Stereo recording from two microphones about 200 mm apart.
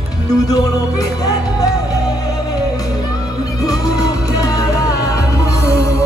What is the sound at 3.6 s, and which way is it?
Music, 20° left (ahead or behind).